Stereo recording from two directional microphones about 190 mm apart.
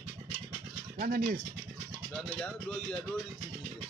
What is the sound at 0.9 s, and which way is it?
Speech, 50° right (ahead or behind).